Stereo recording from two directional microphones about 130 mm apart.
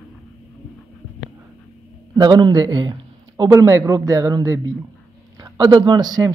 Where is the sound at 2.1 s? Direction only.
35° right (ahead or behind).